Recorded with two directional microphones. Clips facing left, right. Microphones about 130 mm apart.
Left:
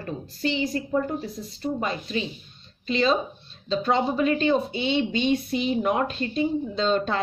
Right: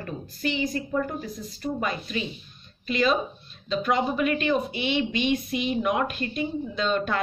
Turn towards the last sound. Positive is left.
turn(degrees=30)  # may be behind; listen again after turning